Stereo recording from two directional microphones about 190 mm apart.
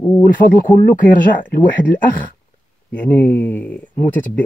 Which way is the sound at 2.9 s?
10° left (ahead or behind).